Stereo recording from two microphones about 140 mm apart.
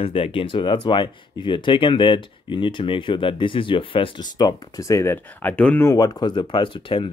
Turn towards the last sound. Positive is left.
turn(degrees=35)  # may be behind; listen again after turning